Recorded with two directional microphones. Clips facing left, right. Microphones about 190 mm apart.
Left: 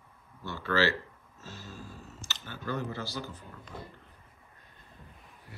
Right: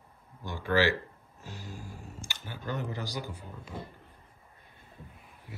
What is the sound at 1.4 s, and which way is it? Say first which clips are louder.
Music: right 1 dB; 15° right (ahead or behind).